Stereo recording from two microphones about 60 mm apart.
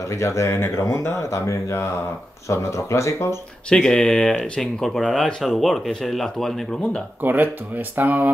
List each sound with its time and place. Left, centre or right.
0.1 s speech: left
1.1 s speech: left
3.7 s speech: centre
7.2 s speech: right